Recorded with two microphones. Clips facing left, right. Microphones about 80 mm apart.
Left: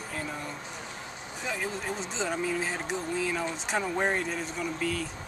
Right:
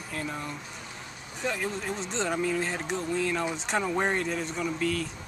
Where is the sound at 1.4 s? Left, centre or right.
Centre.